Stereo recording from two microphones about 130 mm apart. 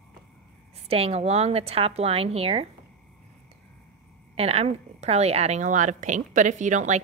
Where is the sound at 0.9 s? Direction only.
50° right (ahead or behind).